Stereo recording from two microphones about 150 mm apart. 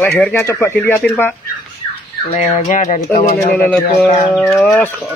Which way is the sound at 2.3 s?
55° left (ahead or behind).